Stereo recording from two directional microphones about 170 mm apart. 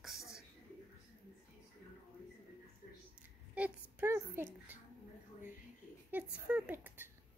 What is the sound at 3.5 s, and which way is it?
Speech, 10° right (ahead or behind).